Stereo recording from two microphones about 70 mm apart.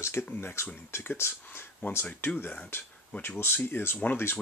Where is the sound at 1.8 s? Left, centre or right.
Left.